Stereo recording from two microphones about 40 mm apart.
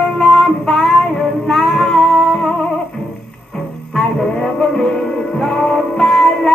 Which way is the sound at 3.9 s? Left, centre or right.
Centre.